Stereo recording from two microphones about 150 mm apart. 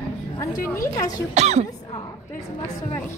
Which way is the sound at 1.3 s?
50° right (ahead or behind).